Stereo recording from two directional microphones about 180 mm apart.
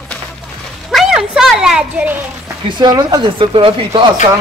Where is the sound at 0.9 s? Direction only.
5° right (ahead or behind).